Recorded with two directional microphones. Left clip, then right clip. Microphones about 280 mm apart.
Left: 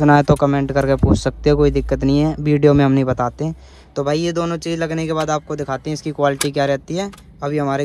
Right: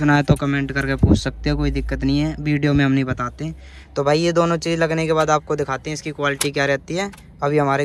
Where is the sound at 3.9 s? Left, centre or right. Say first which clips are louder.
Right 2 dB; centre.